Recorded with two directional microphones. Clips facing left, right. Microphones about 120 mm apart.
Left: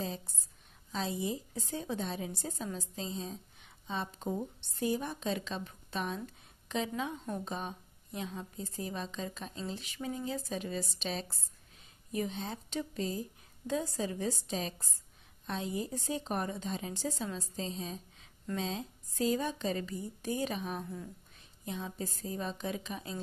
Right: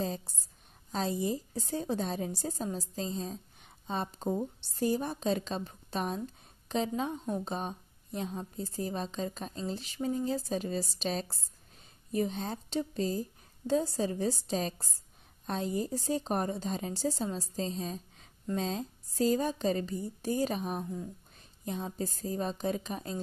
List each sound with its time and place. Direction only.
0.0 s a woman's voice: 40° right (ahead or behind)